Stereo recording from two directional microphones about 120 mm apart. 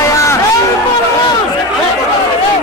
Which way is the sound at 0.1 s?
25° left (ahead or behind).